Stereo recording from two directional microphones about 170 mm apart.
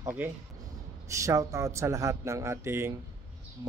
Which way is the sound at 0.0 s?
10° right (ahead or behind).